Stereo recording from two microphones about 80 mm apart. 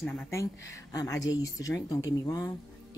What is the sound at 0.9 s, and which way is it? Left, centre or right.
Speech, left.